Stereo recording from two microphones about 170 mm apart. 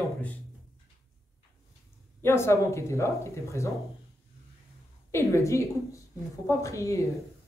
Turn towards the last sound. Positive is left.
turn(degrees=20)  # may be behind; listen again after turning